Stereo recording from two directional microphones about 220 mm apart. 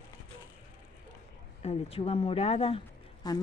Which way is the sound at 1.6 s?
25° left (ahead or behind).